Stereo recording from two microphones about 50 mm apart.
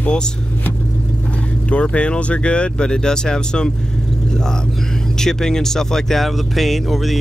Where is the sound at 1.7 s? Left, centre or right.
Left.